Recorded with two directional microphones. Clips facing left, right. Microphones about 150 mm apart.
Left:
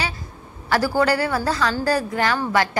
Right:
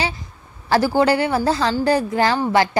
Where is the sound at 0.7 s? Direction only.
25° right (ahead or behind).